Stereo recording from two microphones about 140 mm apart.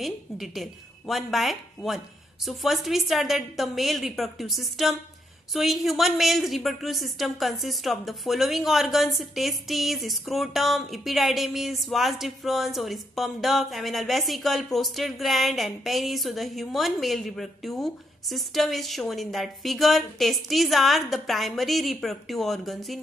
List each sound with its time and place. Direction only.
0.0 s a woman's voice: centre (ahead or behind)